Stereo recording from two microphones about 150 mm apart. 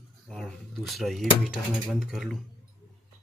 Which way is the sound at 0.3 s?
Centre (ahead or behind).